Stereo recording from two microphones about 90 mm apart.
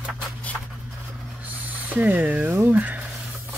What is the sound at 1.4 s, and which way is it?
Speech, 20° right (ahead or behind).